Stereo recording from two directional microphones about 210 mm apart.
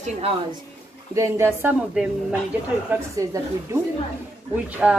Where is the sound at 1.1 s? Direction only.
15° right (ahead or behind).